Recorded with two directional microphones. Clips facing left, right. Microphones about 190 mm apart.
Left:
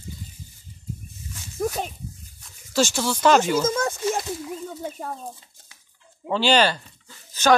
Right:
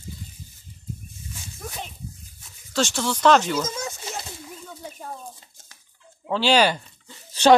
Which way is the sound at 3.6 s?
55° left (ahead or behind).